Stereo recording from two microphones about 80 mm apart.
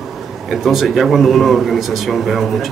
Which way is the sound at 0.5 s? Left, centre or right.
Centre.